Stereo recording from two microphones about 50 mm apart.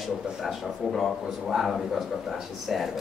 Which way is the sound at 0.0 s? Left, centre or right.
Centre.